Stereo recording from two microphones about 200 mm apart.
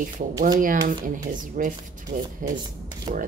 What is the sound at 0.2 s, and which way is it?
A woman's voice, 40° right (ahead or behind).